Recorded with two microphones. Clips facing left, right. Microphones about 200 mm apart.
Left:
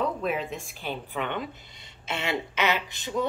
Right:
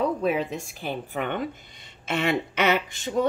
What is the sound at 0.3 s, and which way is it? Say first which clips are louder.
A woman's voice: right 4 dB; 40° right (ahead or behind).